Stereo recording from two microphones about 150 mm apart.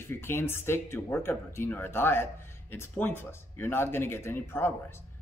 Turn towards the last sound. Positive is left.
turn(degrees=15)  # may be behind; listen again after turning